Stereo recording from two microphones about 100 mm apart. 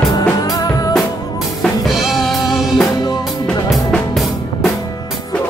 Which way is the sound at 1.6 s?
5° right (ahead or behind).